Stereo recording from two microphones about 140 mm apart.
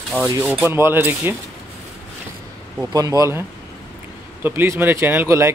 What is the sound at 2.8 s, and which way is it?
Speech, 25° right (ahead or behind).